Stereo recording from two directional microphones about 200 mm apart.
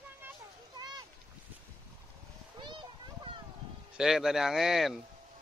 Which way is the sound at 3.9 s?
Centre (ahead or behind).